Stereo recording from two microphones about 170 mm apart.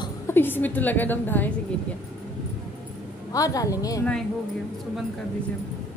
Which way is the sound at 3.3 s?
20° left (ahead or behind).